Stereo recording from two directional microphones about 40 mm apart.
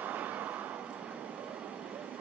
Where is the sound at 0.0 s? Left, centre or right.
Right.